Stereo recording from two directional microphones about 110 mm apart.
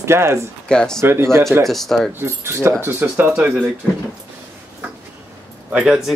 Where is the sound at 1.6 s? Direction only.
Centre (ahead or behind).